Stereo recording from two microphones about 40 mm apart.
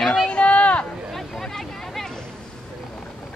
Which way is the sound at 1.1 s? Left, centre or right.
Centre.